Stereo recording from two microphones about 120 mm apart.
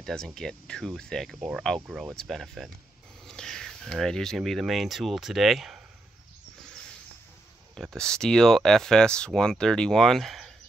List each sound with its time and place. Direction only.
0.0 s speech: 5° left (ahead or behind)
7.7 s speech: 5° left (ahead or behind)